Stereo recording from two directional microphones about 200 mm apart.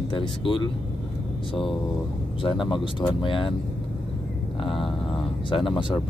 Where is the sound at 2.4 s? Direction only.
25° left (ahead or behind).